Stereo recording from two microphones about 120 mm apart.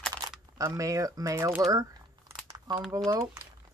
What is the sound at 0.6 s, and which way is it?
Speech, 25° right (ahead or behind).